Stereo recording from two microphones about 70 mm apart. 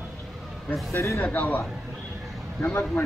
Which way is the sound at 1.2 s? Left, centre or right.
Left.